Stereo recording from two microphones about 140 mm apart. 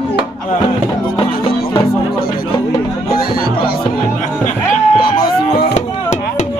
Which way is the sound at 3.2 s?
90° left.